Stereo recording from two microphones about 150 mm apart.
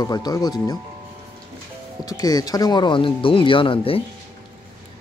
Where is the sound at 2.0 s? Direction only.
25° left (ahead or behind).